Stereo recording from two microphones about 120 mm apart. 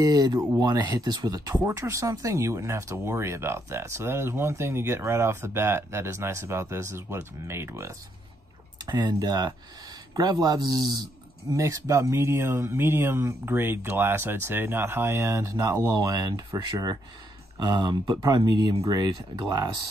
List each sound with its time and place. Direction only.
0.0 s speech: 35° right (ahead or behind)
8.8 s speech: 35° right (ahead or behind)